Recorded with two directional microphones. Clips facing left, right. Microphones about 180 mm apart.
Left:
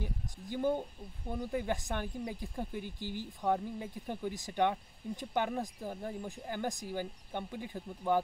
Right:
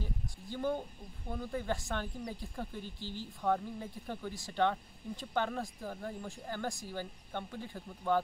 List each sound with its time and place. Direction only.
0.0 s speech: 15° left (ahead or behind)